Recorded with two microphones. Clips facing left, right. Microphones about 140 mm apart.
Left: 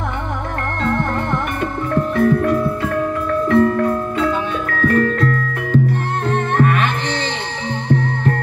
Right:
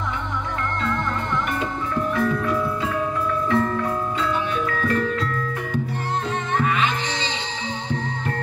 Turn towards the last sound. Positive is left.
turn(degrees=60)  # may be behind; listen again after turning